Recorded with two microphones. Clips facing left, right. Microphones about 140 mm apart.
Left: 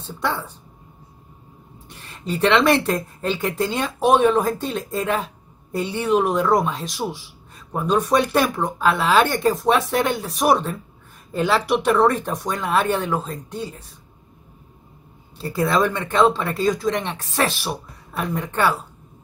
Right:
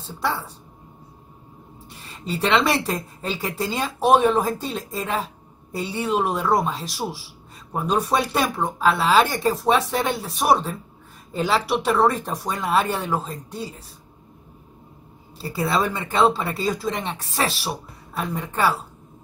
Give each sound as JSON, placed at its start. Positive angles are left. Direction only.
{"t": 0.0, "sound": "speech", "side_deg": -5}
{"t": 2.4, "sound": "speech", "side_deg": -5}
{"t": 15.5, "sound": "speech", "side_deg": -5}